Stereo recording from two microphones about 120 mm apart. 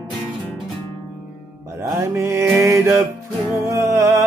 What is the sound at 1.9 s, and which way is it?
Music, 25° right (ahead or behind).